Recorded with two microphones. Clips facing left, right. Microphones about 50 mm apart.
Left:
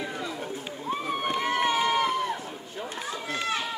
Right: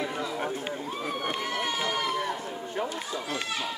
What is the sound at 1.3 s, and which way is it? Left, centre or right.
Run, left.